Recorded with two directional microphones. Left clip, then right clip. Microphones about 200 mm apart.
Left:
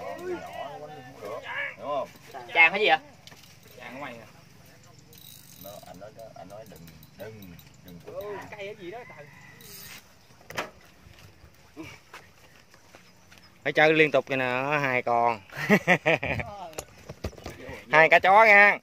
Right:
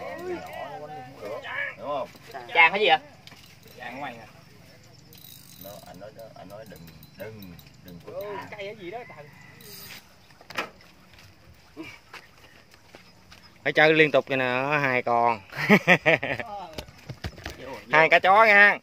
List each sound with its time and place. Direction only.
1.4 s a sound: 10° right (ahead or behind)
1.8 s a sound: 15° left (ahead or behind)
2.5 s speech: 20° left (ahead or behind)
8.5 s speech: 10° right (ahead or behind)
13.6 s speech: centre (ahead or behind)
17.7 s speech: 15° left (ahead or behind)